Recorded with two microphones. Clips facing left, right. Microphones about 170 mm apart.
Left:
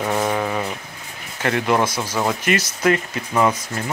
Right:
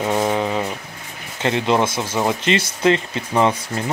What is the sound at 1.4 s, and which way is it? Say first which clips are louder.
Speech: right 1 dB; 20° right (ahead or behind).